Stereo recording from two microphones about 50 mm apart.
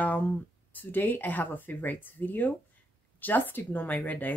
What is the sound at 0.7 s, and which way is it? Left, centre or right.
Speech, left.